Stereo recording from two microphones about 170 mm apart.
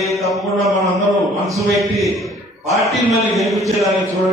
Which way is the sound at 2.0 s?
Centre (ahead or behind).